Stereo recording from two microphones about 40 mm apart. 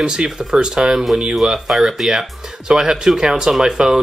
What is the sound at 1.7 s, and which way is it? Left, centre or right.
Speech, centre.